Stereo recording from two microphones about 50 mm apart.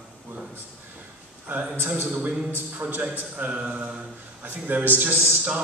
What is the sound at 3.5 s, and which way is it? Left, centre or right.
Mantra, right.